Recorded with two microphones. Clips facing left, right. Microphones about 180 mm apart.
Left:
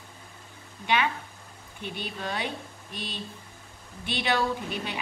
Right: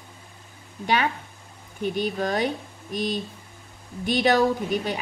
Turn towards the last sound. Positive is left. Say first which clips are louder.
# right 7 dB
turn(degrees=-40)  # may be behind; listen again after turning